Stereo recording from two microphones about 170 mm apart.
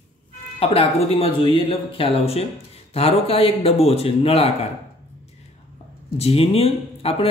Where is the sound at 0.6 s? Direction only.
35° left (ahead or behind).